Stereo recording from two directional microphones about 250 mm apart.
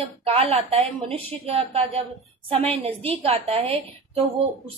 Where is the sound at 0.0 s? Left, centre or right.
Right.